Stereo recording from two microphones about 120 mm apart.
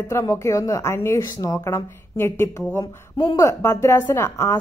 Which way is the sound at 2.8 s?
40° left (ahead or behind).